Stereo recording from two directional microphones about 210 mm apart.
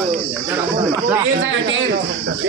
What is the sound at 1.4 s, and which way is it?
Speech, 65° right (ahead or behind).